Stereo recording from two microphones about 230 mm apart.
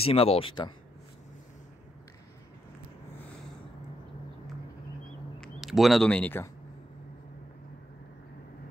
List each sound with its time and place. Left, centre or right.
0.0 s speech: left
5.4 s speech: centre